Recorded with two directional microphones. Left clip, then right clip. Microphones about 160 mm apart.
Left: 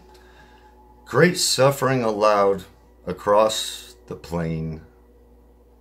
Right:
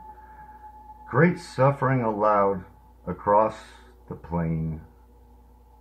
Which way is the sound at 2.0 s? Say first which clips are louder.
Left 4 dB; 45° left (ahead or behind).